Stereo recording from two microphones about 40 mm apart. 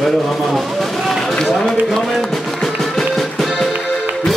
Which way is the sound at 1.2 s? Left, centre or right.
Centre.